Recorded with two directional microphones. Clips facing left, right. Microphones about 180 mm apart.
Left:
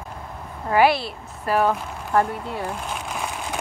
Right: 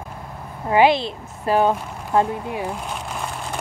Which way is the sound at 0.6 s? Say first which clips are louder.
Right 2 dB; 20° right (ahead or behind).